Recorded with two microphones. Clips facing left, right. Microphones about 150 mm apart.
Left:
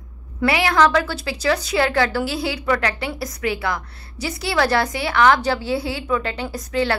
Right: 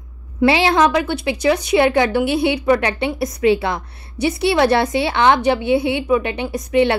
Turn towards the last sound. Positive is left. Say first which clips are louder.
# right 6 dB
turn(degrees=-20)  # may be behind; listen again after turning